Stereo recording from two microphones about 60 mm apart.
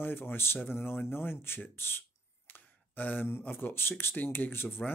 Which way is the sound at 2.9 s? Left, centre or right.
Left.